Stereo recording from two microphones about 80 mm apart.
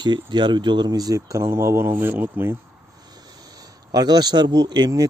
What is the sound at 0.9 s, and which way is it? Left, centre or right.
Speech, right.